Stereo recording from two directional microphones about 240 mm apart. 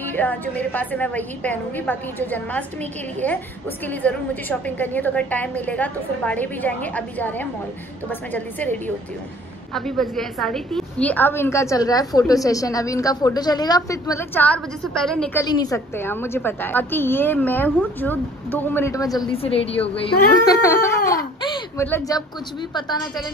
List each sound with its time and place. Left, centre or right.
0.0 s a woman's voice: centre
3.8 s a woman's voice: centre
15.4 s a woman's voice: centre
19.3 s a woman's voice: left
20.1 s a woman's voice: centre